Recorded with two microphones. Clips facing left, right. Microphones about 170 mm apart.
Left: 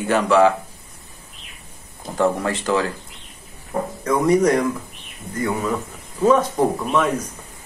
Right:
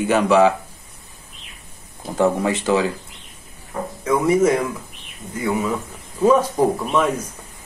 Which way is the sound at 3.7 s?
30° left (ahead or behind).